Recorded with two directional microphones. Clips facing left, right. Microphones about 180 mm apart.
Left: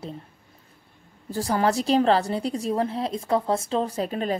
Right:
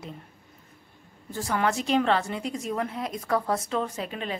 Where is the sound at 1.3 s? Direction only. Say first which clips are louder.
Left 4 dB; 35° left (ahead or behind).